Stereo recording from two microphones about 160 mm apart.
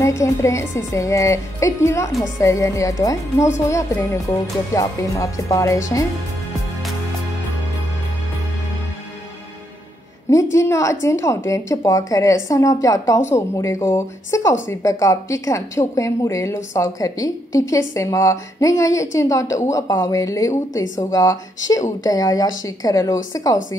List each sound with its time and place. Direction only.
0.0 s speech: 20° left (ahead or behind)
10.3 s speech: 20° left (ahead or behind)